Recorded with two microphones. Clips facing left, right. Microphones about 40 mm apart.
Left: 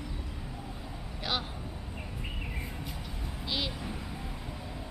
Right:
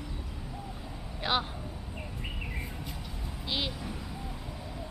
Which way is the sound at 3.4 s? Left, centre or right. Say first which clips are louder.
Right 1 dB; centre.